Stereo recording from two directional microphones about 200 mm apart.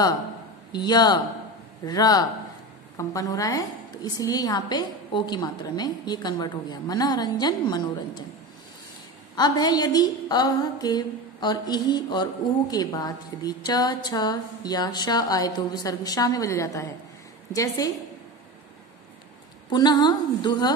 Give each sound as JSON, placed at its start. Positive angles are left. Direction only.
{"t": 0.7, "sound": "a woman's voice", "side_deg": 20}
{"t": 9.3, "sound": "a woman's voice", "side_deg": 20}
{"t": 19.7, "sound": "a woman's voice", "side_deg": 20}